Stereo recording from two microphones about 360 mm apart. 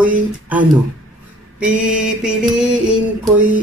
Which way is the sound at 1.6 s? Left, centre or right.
Centre.